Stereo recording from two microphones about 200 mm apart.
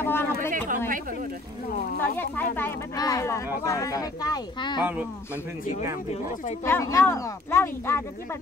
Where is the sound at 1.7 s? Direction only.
50° left (ahead or behind).